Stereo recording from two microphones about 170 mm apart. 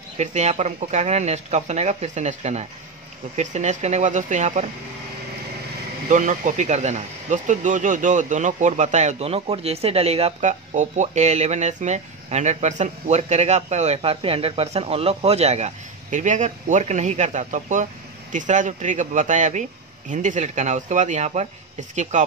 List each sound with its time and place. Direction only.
0.2 s speech: 40° right (ahead or behind)
6.0 s speech: 45° right (ahead or behind)